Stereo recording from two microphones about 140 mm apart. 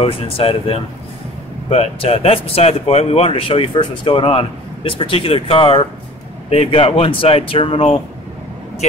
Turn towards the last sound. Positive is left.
turn(degrees=40)  # may be behind; listen again after turning